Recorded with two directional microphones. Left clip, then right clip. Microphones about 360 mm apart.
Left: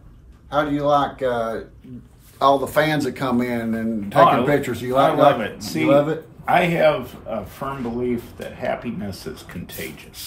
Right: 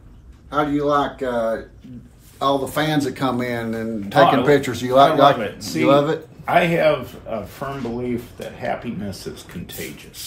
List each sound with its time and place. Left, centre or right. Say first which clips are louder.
0.5 s a man's voice: left 1 dB; left
2.3 s speech: left 3 dB; centre